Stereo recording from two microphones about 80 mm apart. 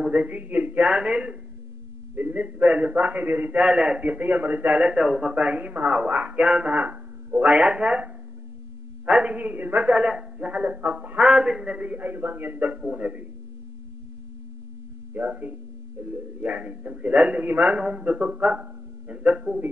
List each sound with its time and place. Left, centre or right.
0.0 s a man's voice: centre
2.1 s a man's voice: right
3.6 s a man's voice: centre
15.1 s a man's voice: right